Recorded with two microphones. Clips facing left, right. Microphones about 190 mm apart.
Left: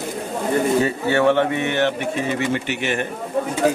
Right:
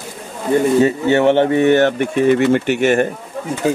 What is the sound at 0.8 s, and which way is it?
Speech, 20° right (ahead or behind).